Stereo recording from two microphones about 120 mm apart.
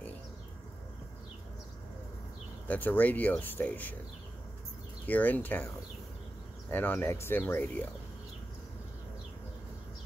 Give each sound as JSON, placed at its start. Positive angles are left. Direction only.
{"t": 2.7, "sound": "speech", "side_deg": 15}
{"t": 5.0, "sound": "speech", "side_deg": 15}
{"t": 6.7, "sound": "speech", "side_deg": 15}